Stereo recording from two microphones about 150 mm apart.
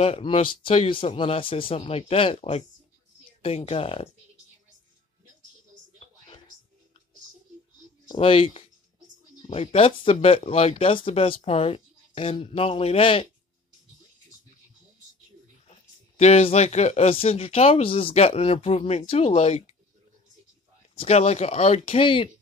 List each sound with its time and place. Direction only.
0.0 s speech: 40° left (ahead or behind)
5.9 s a sound: 35° left (ahead or behind)
8.1 s speech: 35° left (ahead or behind)
15.6 s speech: 45° left (ahead or behind)
20.9 s speech: 40° left (ahead or behind)